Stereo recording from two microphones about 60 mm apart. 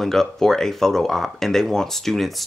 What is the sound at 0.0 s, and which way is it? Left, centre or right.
Speech, centre.